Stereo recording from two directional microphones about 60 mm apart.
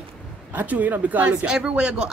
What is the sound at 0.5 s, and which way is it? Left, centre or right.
Speech, right.